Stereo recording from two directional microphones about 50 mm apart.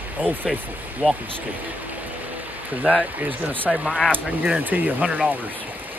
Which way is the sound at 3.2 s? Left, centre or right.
Right.